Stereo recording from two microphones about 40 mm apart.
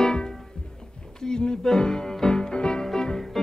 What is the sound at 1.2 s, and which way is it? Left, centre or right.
Music, centre.